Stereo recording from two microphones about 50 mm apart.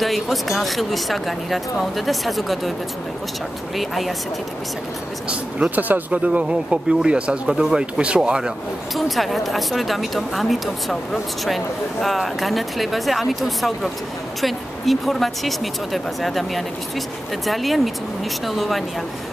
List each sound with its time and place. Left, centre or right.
0.0 s speech: centre
3.7 s speech: centre
5.8 s speech: right; by 8.5 s centre
8.9 s speech: centre